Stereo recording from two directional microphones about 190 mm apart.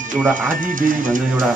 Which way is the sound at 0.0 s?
45° right (ahead or behind).